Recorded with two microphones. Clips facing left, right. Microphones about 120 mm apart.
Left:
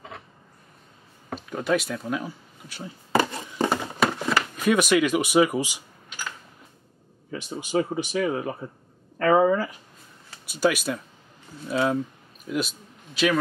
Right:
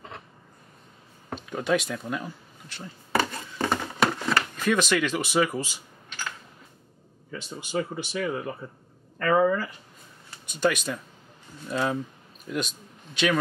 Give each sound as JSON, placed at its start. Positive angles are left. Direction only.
{"t": 1.3, "sound": "speech", "side_deg": 0}
{"t": 3.1, "sound": "a sound", "side_deg": 20}
{"t": 7.2, "sound": "a man's voice", "side_deg": 20}